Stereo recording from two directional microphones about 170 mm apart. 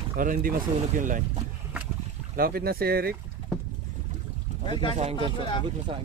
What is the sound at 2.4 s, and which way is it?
Speech, 60° right (ahead or behind).